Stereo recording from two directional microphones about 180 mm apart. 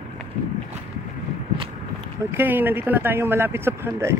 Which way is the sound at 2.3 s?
10° right (ahead or behind).